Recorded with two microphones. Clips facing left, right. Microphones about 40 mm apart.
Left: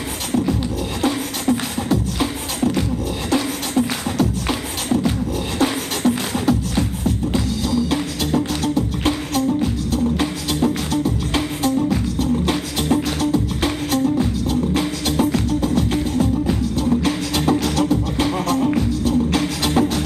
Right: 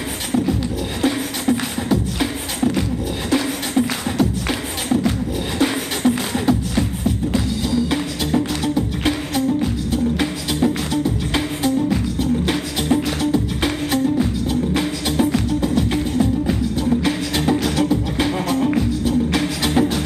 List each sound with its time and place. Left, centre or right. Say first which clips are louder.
1.0 s beatboxing: right 1 dB; centre
5.6 s beatboxing: right 1 dB; centre
7.3 s music: even; centre